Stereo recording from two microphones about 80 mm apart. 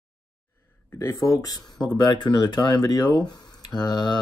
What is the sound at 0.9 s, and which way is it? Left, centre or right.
Speech, left.